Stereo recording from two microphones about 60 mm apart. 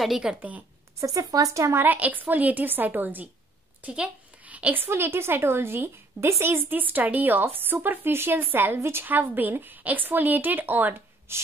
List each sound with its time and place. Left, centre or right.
0.0 s a woman's voice: centre
0.4 s a woman's voice: right
1.0 s a woman's voice: right
1.8 s a woman's voice: right
4.8 s a woman's voice: right
11.3 s a sound: right